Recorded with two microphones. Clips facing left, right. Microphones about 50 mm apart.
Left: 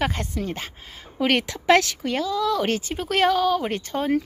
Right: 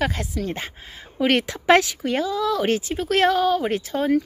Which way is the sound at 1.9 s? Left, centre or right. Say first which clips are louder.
Right 1 dB; centre.